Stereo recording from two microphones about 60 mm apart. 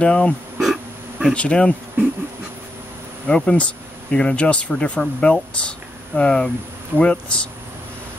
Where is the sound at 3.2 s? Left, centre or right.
Centre.